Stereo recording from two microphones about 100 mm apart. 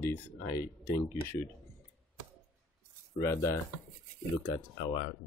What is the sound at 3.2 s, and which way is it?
Speech, 30° left (ahead or behind).